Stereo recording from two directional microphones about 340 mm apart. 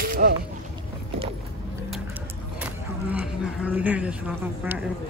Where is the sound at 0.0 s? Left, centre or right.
Right.